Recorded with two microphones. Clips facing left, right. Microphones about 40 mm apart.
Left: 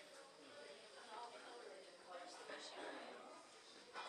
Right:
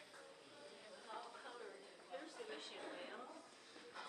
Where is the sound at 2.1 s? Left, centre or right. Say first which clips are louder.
Right 3 dB; right.